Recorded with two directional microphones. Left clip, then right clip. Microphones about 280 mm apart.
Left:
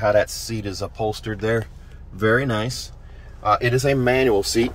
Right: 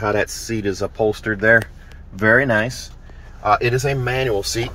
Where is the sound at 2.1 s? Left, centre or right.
Centre.